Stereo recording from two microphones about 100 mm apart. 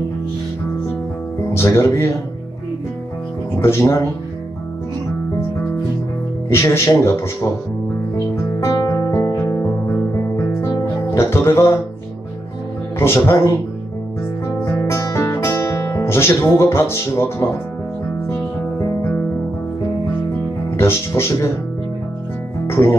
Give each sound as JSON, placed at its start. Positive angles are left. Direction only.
{"t": 1.5, "sound": "speech", "side_deg": 25}
{"t": 3.5, "sound": "a man's voice", "side_deg": 25}
{"t": 6.5, "sound": "a man's voice", "side_deg": 25}
{"t": 8.5, "sound": "music", "side_deg": 30}
{"t": 13.0, "sound": "a man's voice", "side_deg": 25}
{"t": 14.6, "sound": "music", "side_deg": 30}
{"t": 20.7, "sound": "speech", "side_deg": 25}
{"t": 22.7, "sound": "speech", "side_deg": 25}